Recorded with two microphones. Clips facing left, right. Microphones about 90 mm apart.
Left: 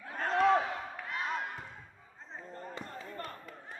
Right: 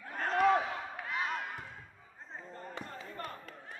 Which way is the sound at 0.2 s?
Centre (ahead or behind).